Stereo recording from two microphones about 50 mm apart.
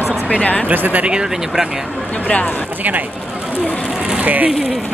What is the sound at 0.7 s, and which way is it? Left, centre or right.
Speech, right.